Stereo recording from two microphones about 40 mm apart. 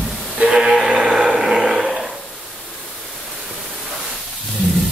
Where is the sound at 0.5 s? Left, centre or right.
Centre.